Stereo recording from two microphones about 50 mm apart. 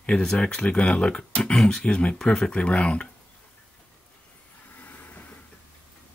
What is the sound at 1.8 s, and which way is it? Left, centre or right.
Speech, left.